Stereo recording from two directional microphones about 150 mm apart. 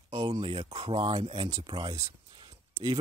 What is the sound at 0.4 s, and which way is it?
Speech, 35° right (ahead or behind).